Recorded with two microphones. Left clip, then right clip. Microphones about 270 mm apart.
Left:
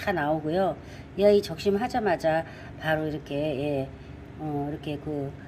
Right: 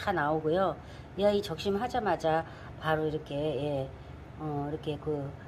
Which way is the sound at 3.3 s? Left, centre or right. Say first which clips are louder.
Left 3 dB; right.